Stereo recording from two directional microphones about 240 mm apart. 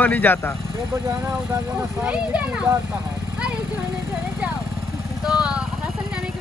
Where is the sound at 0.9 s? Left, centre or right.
Centre.